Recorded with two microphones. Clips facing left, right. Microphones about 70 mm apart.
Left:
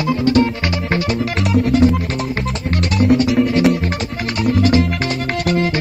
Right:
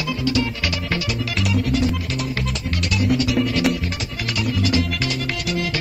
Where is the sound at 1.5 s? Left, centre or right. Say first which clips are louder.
Left 8 dB; left.